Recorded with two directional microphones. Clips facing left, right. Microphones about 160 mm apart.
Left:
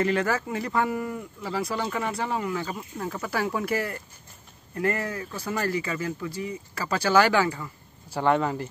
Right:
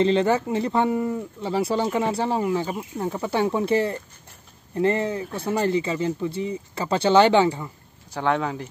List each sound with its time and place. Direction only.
0.0 s speech: 25° right (ahead or behind)
8.1 s speech: 5° left (ahead or behind)